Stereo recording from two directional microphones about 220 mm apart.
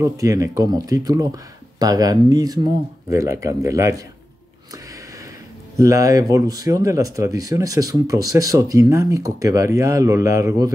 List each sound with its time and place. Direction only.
0.0 s speech: 15° right (ahead or behind)
5.8 s speech: 15° right (ahead or behind)